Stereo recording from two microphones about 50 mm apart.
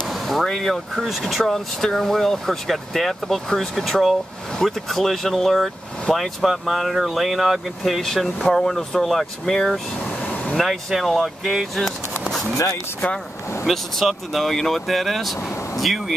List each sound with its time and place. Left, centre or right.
0.1 s vehicle: centre
0.9 s speech: centre
10.2 s vehicle: left
10.5 s speech: centre
11.7 s a sound: centre
13.7 s speech: centre